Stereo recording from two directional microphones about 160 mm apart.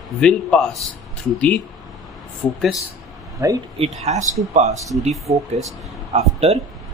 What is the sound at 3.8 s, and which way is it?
Speech, 45° right (ahead or behind).